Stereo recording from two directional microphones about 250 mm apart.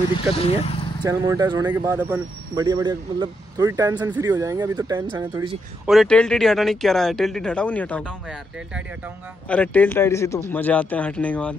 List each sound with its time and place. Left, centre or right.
0.3 s speech: left
1.0 s speech: centre
5.9 s speech: centre